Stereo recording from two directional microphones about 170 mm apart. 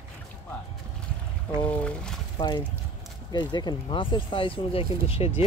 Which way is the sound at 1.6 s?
5° left (ahead or behind).